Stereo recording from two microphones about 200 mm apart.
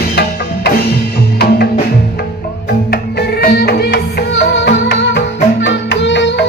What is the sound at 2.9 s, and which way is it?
Music, 50° left (ahead or behind).